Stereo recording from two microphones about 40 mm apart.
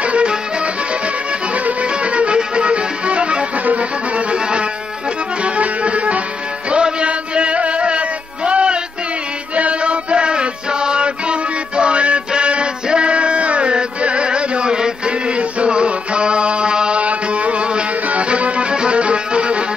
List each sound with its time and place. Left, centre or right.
0.0 s music: right
1.5 s music: right
12.3 s chant: right
17.0 s music: right